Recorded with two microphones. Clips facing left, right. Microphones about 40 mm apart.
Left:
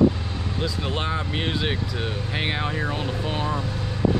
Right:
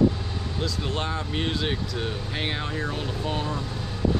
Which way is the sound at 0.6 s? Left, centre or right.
Centre.